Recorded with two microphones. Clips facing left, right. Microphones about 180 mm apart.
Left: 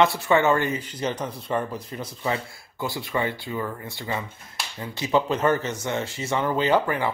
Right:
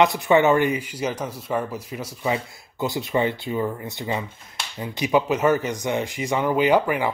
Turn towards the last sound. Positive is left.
turn(degrees=-15)  # may be behind; listen again after turning